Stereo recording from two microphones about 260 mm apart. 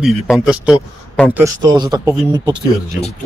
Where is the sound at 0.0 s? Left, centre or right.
Centre.